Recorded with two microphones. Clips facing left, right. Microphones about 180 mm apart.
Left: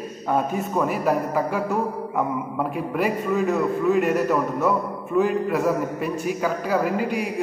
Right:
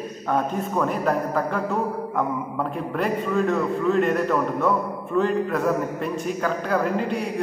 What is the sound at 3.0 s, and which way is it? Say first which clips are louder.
A man's voice: even; 10° left (ahead or behind).